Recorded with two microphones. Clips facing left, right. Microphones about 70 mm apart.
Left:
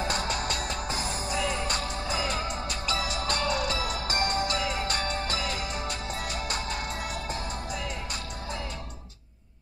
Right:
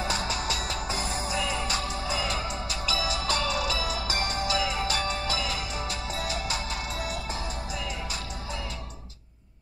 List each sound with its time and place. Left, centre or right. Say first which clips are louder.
0.0 s music: even; left